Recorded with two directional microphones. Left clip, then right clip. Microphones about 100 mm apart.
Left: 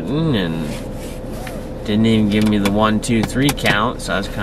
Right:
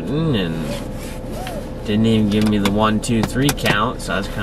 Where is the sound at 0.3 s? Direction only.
25° left (ahead or behind).